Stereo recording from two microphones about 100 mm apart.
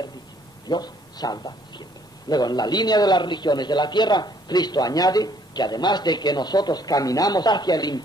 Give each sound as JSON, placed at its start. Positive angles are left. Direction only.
{"t": 0.7, "sound": "a man's voice", "side_deg": 45}